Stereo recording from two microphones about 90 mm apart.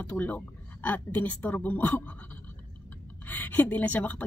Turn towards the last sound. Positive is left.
turn(degrees=20)  # may be behind; listen again after turning